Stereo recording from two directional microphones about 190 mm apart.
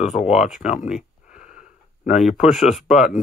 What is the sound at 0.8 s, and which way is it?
Speech, 5° right (ahead or behind).